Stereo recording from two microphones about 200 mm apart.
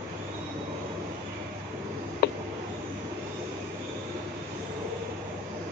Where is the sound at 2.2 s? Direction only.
55° left (ahead or behind).